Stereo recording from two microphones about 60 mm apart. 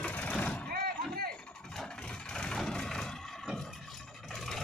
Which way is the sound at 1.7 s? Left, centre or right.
Centre.